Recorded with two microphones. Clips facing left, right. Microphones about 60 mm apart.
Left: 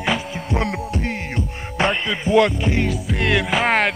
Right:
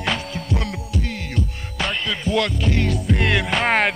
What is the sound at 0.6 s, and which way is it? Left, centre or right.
Music, left.